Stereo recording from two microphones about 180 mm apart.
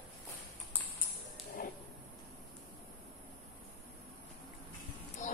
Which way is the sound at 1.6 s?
55° left (ahead or behind).